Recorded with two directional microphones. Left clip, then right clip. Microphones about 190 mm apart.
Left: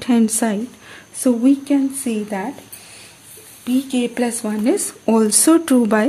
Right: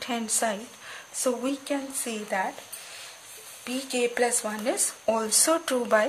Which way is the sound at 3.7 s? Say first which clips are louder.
Left 7 dB; 10° left (ahead or behind).